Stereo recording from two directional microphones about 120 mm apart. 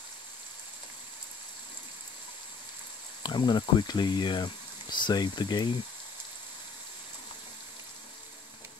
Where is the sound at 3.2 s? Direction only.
40° left (ahead or behind).